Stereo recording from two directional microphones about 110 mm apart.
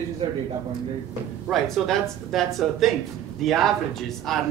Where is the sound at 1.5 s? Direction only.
Centre (ahead or behind).